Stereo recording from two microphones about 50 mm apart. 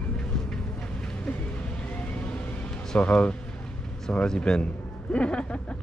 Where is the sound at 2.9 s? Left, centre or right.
Left.